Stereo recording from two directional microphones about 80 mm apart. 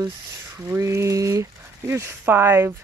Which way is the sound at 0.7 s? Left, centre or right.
Right.